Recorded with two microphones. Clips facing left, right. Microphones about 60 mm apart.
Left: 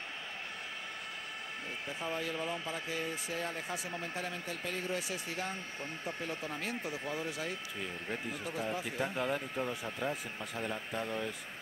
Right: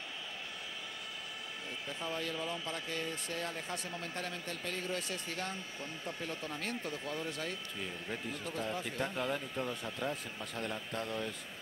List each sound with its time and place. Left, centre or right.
1.9 s speech: left
2.6 s speech: centre